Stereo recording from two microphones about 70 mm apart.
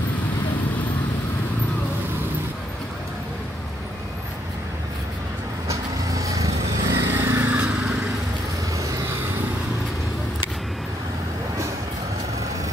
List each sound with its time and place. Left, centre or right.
5.7 s vehicle: right
8.7 s vehicle: right